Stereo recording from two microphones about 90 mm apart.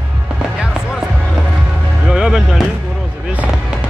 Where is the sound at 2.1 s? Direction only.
5° right (ahead or behind).